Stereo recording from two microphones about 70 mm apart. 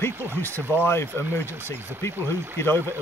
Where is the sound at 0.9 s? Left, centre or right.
Left.